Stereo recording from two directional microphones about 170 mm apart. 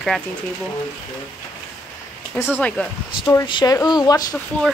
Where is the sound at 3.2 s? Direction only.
25° left (ahead or behind).